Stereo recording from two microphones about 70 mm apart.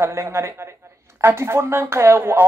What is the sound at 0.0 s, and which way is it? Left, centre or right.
Speech, right.